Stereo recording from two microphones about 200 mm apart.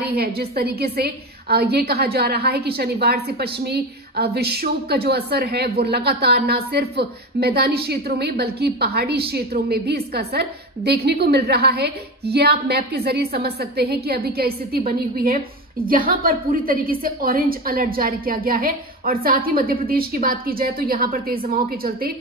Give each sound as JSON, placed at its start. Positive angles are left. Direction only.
{"t": 0.0, "sound": "a woman's voice", "side_deg": -50}